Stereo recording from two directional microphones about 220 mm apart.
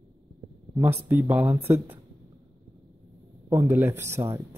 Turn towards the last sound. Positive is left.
turn(degrees=-10)  # may be behind; listen again after turning